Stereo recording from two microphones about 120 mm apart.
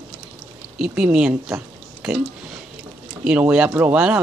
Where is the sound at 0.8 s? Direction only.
5° right (ahead or behind).